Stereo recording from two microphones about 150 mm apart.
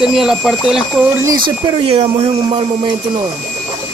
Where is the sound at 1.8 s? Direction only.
40° right (ahead or behind).